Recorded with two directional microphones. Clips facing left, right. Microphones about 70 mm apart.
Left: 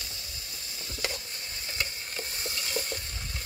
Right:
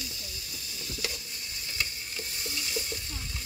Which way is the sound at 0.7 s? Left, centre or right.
Left.